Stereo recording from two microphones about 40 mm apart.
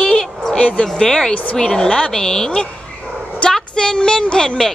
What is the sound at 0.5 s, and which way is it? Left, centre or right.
Speech, left.